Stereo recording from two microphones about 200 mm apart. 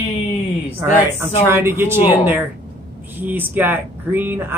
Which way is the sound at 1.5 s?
10° right (ahead or behind).